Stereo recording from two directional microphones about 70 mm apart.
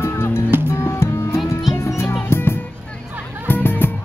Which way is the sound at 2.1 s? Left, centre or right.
Left.